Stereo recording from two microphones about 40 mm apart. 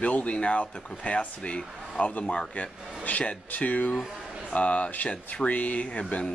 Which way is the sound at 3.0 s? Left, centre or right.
Left.